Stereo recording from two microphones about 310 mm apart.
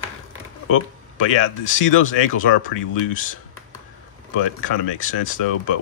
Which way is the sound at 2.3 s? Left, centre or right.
Left.